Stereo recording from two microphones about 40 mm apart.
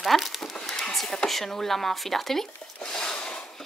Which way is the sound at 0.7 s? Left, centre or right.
Centre.